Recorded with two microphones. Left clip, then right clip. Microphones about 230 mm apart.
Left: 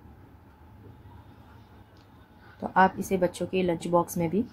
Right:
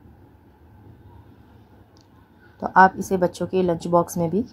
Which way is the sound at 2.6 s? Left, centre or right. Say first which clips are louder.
Right 7 dB; centre.